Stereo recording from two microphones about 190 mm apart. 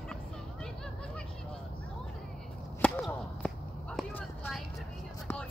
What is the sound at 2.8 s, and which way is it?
Whip, 5° left (ahead or behind).